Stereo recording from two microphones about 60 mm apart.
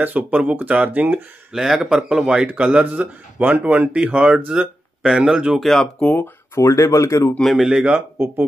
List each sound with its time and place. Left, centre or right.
0.0 s speech: right
1.5 s speech: centre
5.6 s speech: centre
5.9 s speech: left
6.5 s speech: left
7.4 s speech: centre
7.7 s speech: centre